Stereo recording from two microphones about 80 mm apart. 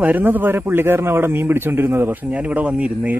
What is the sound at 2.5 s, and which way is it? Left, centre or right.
Speech, centre.